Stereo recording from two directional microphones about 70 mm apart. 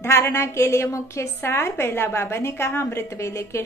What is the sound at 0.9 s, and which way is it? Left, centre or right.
Speech, left.